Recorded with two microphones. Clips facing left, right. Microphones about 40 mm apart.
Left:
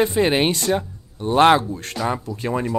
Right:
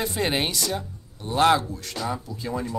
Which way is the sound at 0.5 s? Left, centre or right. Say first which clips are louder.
Left 7 dB; left.